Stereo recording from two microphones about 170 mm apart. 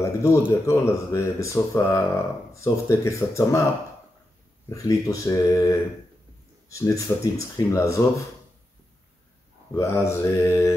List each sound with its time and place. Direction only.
0.0 s speech: 15° left (ahead or behind)
4.6 s speech: 20° left (ahead or behind)
9.8 s speech: 15° left (ahead or behind)